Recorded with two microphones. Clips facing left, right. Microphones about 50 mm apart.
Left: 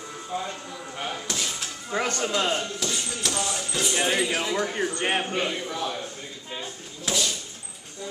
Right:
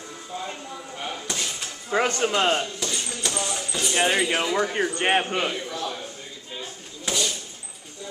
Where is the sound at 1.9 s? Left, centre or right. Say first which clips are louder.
Right 4 dB; right.